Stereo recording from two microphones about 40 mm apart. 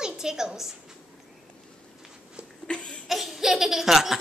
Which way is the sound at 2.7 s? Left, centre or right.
Left.